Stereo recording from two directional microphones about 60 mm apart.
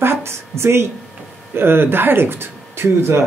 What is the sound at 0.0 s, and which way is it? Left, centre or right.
A woman's voice, right.